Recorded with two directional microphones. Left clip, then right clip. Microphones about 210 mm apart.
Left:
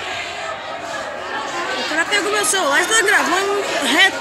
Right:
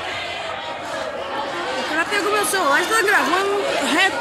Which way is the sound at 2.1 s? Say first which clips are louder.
Left 2 dB; 15° left (ahead or behind).